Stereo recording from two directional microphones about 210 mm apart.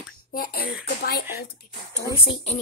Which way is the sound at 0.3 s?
45° left (ahead or behind).